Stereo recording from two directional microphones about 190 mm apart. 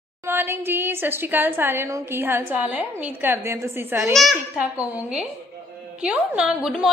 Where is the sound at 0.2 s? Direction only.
10° right (ahead or behind).